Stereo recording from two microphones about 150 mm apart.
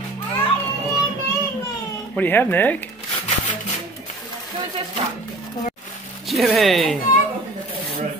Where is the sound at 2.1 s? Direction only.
10° left (ahead or behind).